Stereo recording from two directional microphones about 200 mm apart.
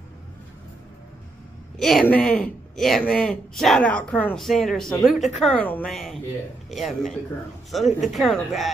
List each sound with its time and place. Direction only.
1.8 s a man's voice: centre (ahead or behind)